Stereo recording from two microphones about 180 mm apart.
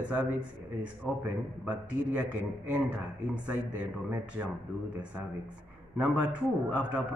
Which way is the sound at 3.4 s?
5° right (ahead or behind).